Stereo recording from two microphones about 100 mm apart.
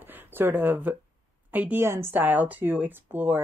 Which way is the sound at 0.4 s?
20° right (ahead or behind).